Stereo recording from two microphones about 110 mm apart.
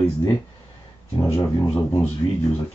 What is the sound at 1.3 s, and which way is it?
Speech, 20° left (ahead or behind).